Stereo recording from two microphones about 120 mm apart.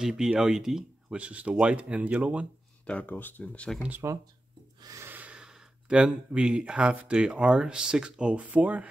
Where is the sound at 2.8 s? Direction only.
10° left (ahead or behind).